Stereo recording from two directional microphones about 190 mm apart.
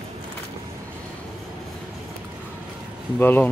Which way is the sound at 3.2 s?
10° left (ahead or behind).